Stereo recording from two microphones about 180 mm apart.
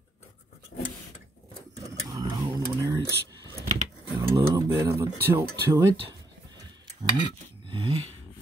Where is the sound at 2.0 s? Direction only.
20° right (ahead or behind).